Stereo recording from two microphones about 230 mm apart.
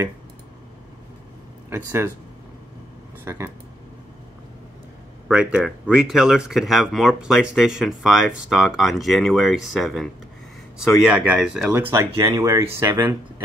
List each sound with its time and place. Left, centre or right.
1.7 s speech: centre
3.3 s speech: centre
5.3 s speech: centre
11.8 s speech: centre